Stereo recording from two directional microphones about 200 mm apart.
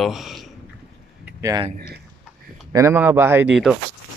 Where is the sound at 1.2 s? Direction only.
15° right (ahead or behind).